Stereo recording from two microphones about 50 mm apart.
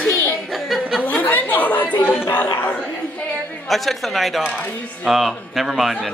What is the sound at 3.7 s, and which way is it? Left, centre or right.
Speech, centre.